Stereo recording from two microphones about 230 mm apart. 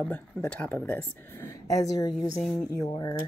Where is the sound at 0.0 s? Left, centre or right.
Centre; by 3.2 s left.